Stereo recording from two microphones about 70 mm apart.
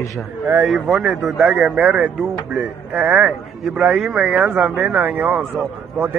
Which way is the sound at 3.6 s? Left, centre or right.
Centre.